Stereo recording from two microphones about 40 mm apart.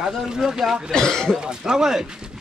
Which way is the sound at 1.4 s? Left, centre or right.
Centre.